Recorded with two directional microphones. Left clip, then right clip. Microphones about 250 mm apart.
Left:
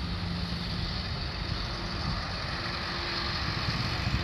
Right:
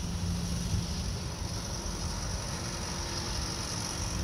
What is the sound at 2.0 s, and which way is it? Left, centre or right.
Vehicle, right.